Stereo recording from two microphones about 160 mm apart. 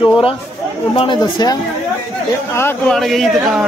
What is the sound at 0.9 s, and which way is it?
Speech, 30° left (ahead or behind).